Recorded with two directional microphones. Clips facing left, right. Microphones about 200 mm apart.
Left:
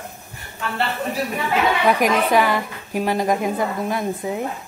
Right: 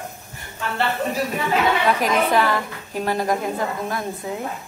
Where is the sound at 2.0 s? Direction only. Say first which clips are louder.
Left 2 dB; 15° left (ahead or behind).